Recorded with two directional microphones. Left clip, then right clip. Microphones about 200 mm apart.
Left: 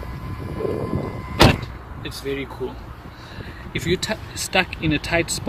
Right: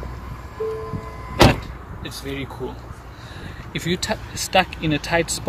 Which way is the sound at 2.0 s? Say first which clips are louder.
Left 3 dB; 40° right (ahead or behind).